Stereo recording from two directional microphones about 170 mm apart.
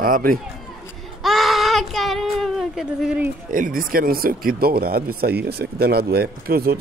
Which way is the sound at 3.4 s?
50° right (ahead or behind).